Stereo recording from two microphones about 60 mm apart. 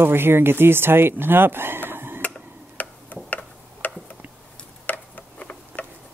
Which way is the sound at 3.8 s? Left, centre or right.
Left.